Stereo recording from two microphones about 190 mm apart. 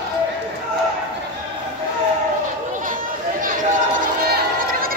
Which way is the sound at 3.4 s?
45° right (ahead or behind).